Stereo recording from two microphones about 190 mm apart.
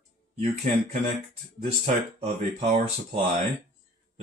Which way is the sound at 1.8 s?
35° right (ahead or behind).